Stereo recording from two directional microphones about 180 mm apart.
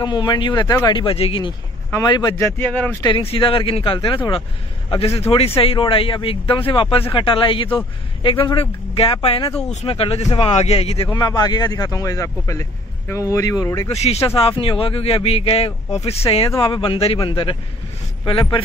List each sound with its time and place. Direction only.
0.0 s a man's voice: 25° left (ahead or behind)
1.9 s a man's voice: 20° left (ahead or behind)
2.6 s speech: 10° left (ahead or behind)
3.0 s a man's voice: 30° left (ahead or behind)
11.1 s a man's voice: 20° left (ahead or behind)
14.0 s a man's voice: 35° left (ahead or behind)